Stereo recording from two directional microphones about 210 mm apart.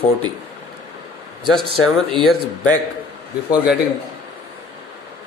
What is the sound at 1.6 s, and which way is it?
Speech, 25° right (ahead or behind).